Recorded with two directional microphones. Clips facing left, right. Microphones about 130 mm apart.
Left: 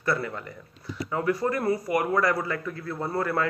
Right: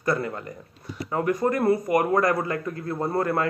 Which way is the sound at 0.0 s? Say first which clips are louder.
Right 2 dB; 40° right (ahead or behind).